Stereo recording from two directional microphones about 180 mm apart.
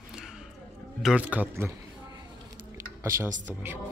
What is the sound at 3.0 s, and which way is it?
Speech, 15° right (ahead or behind).